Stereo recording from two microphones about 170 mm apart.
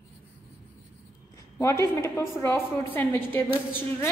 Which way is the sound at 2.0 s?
15° left (ahead or behind).